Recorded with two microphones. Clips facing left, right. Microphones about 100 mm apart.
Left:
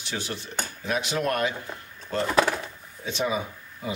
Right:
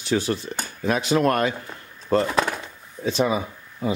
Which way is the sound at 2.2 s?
Centre (ahead or behind).